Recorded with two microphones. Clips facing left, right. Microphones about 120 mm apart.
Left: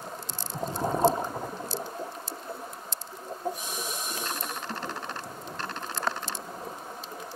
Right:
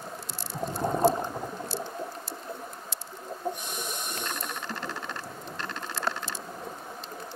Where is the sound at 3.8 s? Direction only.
Centre (ahead or behind).